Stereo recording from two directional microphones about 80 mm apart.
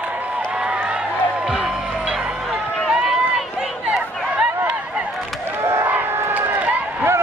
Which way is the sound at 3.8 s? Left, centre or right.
Centre.